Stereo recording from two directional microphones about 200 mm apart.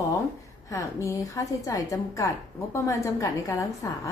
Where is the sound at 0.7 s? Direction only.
15° left (ahead or behind).